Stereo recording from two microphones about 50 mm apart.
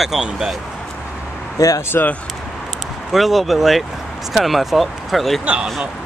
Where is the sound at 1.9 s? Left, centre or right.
Left.